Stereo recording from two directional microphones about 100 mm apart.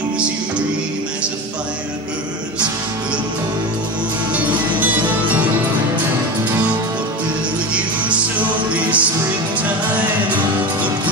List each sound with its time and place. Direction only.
4.3 s music: 15° right (ahead or behind)
7.7 s music: 15° right (ahead or behind)